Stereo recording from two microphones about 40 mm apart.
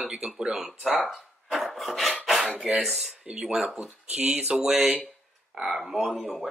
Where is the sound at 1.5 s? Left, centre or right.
Centre.